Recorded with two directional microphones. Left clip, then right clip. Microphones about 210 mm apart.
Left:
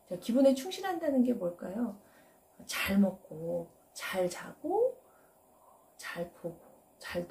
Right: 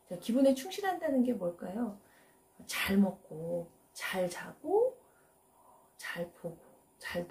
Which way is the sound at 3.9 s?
5° right (ahead or behind).